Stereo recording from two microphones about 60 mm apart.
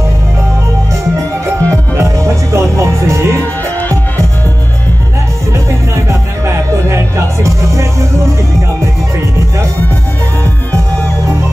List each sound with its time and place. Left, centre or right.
1.6 s music: right
6.0 s music: right